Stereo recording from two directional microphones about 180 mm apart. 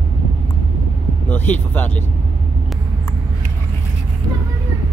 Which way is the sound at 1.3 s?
10° left (ahead or behind).